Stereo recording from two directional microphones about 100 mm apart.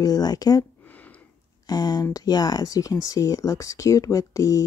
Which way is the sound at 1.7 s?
40° left (ahead or behind).